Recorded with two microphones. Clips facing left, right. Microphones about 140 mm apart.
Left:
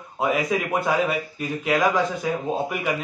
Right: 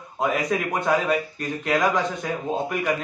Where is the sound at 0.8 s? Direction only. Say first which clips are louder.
Right 1 dB; 5° left (ahead or behind).